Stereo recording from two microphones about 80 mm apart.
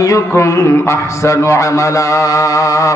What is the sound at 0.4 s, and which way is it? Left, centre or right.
A man's voice, left.